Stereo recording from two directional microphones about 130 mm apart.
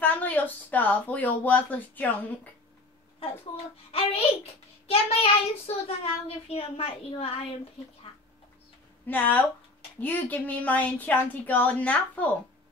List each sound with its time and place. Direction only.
0.0 s speech: 10° left (ahead or behind)
3.9 s child singing: 50° left (ahead or behind)
9.0 s speech: 15° left (ahead or behind)